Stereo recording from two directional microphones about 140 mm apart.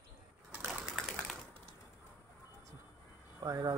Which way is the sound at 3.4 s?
25° right (ahead or behind).